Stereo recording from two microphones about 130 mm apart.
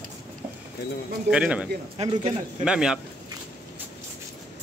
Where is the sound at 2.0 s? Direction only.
55° right (ahead or behind).